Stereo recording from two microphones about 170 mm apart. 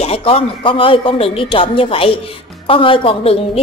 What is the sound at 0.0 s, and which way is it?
A woman's voice, 35° left (ahead or behind).